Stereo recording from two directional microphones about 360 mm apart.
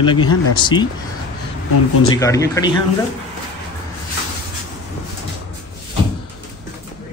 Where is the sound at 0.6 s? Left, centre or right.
Centre.